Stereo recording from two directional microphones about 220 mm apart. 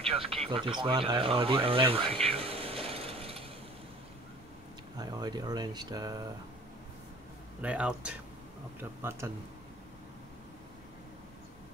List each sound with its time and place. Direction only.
0.0 s speech: 25° right (ahead or behind)
2.2 s mechanisms: 25° right (ahead or behind)
4.9 s speech: 15° right (ahead or behind)
7.6 s speech: 5° right (ahead or behind)